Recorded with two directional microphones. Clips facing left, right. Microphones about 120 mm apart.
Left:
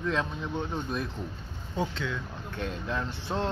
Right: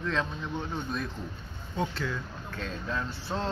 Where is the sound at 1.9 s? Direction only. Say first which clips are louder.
Even; 5° right (ahead or behind).